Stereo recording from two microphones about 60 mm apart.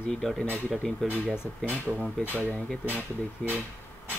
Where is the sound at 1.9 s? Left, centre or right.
Right.